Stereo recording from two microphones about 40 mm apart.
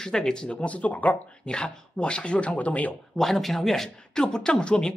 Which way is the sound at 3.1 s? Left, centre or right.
Centre.